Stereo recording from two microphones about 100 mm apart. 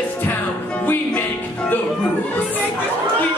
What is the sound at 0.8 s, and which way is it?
Music, 20° left (ahead or behind).